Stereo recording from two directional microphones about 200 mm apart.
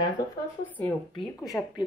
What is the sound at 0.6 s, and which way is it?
Speech, 10° left (ahead or behind).